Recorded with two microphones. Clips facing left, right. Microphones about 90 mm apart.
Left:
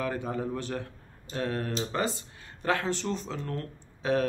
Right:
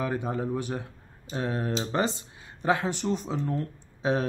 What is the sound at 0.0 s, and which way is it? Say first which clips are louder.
A man's voice: right 2 dB; 20° right (ahead or behind).